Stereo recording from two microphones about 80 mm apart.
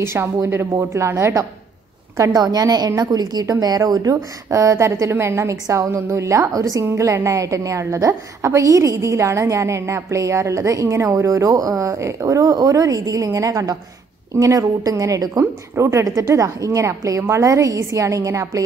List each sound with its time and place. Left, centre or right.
0.0 s a woman's voice: right
2.1 s a woman's voice: right